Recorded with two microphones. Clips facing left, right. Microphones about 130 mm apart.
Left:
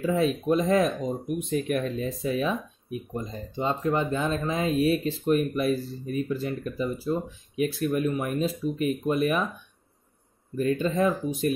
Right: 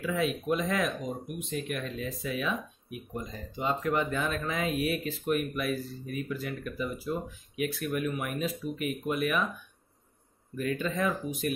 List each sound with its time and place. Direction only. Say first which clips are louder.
0.0 s speech: left 6 dB; 35° left (ahead or behind)
1.2 s speech: left 9 dB; centre (ahead or behind)
1.8 s speech: left 7 dB; 40° left (ahead or behind)
10.5 s speech: left 6 dB; 35° left (ahead or behind)